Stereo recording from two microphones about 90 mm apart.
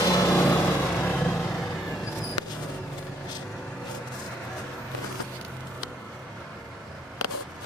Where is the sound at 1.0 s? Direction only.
10° left (ahead or behind).